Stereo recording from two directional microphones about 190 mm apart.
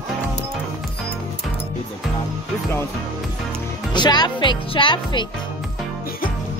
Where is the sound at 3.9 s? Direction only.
25° left (ahead or behind).